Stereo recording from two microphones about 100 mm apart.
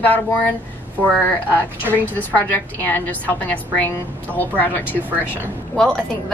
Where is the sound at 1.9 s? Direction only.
20° left (ahead or behind).